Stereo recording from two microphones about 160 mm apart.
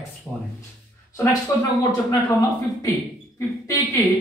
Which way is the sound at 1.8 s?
20° left (ahead or behind).